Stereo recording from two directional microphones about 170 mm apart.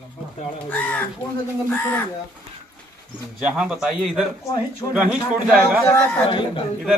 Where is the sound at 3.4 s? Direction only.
5° right (ahead or behind).